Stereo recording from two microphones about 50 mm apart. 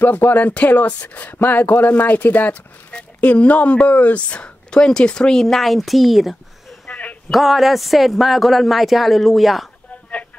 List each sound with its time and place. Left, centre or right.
0.0 s speech: left
3.0 s speech: left
4.6 s speech: centre
6.9 s a sound: left
7.2 s a man's voice: centre